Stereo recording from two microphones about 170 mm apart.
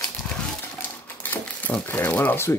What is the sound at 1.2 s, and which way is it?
Crumpling, 10° left (ahead or behind).